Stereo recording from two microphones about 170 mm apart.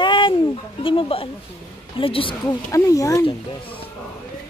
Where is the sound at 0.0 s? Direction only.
30° left (ahead or behind).